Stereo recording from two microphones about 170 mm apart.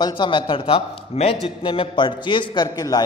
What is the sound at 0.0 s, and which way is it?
A man's voice, 25° left (ahead or behind).